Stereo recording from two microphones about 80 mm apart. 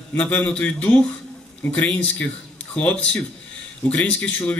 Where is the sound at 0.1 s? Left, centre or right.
Centre.